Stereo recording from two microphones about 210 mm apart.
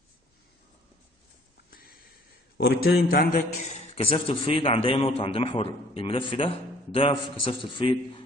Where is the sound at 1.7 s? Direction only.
45° left (ahead or behind).